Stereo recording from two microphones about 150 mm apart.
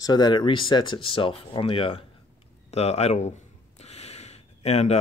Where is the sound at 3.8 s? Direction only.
45° left (ahead or behind).